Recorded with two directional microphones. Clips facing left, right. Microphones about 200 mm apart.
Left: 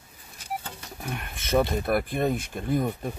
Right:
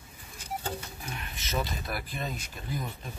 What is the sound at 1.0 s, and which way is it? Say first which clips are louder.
Speech: left 5 dB; 50° left (ahead or behind).